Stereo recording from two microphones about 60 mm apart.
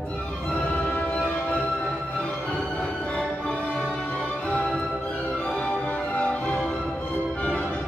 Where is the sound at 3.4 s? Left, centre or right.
Left.